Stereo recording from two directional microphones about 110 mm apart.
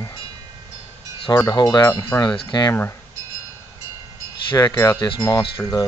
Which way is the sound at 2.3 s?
45° left (ahead or behind).